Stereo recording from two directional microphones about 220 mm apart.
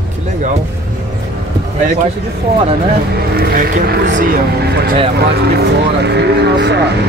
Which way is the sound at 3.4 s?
40° right (ahead or behind).